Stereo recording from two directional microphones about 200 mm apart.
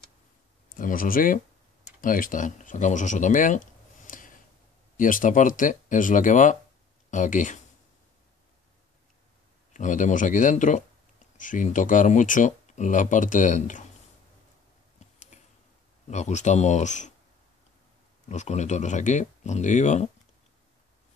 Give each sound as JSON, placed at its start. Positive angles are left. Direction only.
{"t": 0.7, "sound": "speech", "side_deg": 45}
{"t": 9.8, "sound": "speech", "side_deg": 40}
{"t": 15.0, "sound": "a sound", "side_deg": 35}
{"t": 16.1, "sound": "speech", "side_deg": 35}
{"t": 18.3, "sound": "speech", "side_deg": 35}